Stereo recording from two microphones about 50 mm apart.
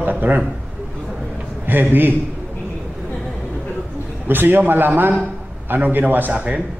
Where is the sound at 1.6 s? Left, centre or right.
Right.